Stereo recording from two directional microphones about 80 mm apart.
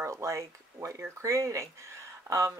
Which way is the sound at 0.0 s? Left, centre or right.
Right.